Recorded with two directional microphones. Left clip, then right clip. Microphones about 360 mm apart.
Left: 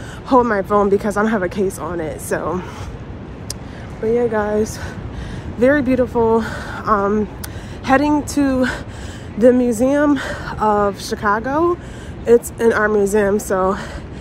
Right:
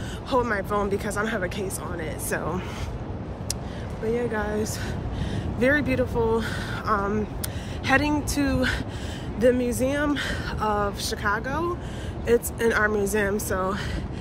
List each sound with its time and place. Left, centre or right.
0.3 s speech: centre
4.1 s speech: centre